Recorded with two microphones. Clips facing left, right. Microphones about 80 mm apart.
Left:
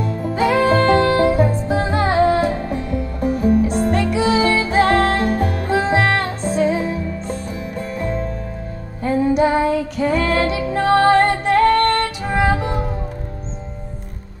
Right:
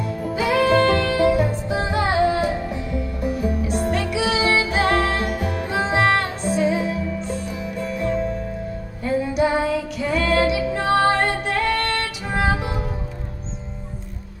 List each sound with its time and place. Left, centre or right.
0.0 s music: left